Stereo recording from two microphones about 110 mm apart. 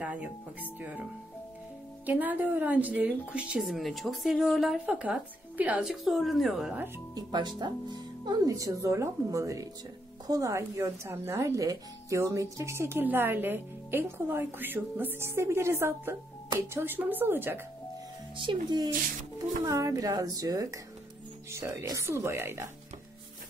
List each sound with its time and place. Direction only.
0.0 s a woman's voice: 15° right (ahead or behind)
2.0 s a woman's voice: 15° right (ahead or behind)
4.7 s a woman's voice: 10° right (ahead or behind)
5.9 s speech: centre (ahead or behind)
7.2 s speech: 40° right (ahead or behind); by 17.6 s 20° right (ahead or behind)
18.3 s speech: 45° right (ahead or behind)
19.3 s speech: 30° right (ahead or behind)